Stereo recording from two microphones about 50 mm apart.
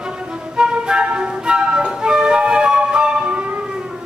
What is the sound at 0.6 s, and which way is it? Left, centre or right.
Flute, centre.